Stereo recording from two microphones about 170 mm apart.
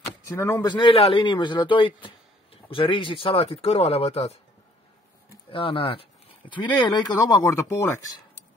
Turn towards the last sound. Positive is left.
turn(degrees=15)  # may be behind; listen again after turning